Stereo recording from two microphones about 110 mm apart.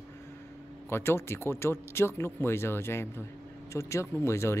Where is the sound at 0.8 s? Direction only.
20° left (ahead or behind).